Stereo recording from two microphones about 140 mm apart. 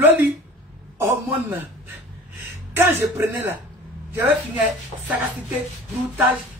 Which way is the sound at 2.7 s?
15° right (ahead or behind).